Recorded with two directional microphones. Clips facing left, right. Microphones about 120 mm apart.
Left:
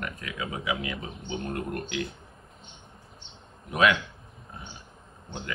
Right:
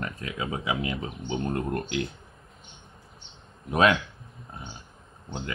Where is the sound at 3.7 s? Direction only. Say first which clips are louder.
Right 2 dB; 35° right (ahead or behind).